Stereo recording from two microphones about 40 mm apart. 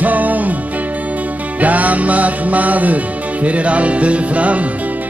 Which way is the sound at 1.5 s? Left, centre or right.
Right.